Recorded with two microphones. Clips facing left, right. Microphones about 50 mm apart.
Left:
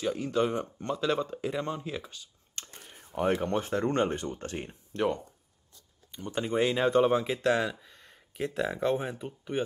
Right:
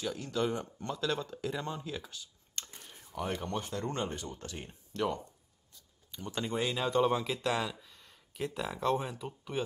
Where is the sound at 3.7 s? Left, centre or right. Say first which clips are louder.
Left 8 dB; left.